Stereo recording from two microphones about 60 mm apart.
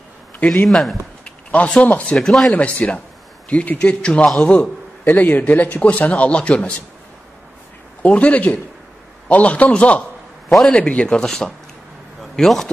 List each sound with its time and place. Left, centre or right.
0.7 s speech: centre
1.2 s a sound: left
1.8 s a man's voice: left
2.1 s speech: centre
2.5 s a man's voice: left
8.0 s a man's voice: left; by 12.7 s centre